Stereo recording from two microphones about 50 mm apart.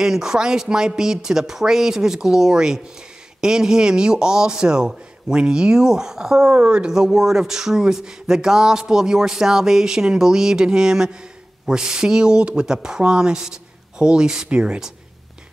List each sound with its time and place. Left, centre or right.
0.0 s speech: centre